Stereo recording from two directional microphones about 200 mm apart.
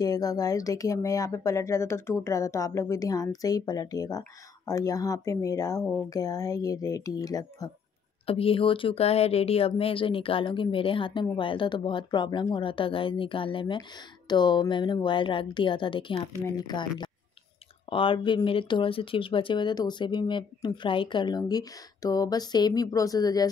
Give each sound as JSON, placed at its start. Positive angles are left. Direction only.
{"t": 0.0, "sound": "speech", "side_deg": 20}